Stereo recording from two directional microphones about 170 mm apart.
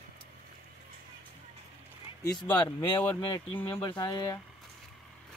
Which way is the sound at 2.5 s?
30° left (ahead or behind).